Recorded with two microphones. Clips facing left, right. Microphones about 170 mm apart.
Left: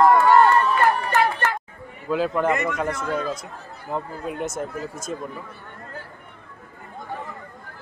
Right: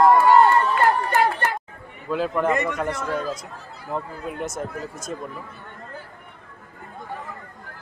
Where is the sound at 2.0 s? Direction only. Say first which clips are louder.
Left 1 dB; centre (ahead or behind).